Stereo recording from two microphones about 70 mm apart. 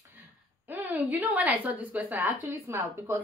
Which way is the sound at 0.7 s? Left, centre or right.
Right.